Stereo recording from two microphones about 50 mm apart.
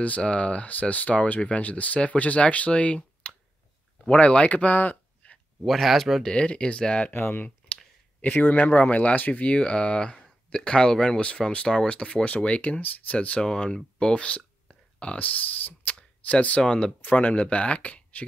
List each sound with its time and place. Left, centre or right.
0.0 s speech: left
4.1 s speech: left
5.7 s speech: centre
6.3 s speech: left
7.1 s speech: left
7.4 s clicking: left
8.2 s speech: left
13.4 s speech: centre
14.7 s a sound: left
15.2 s speech: left
17.0 s speech: left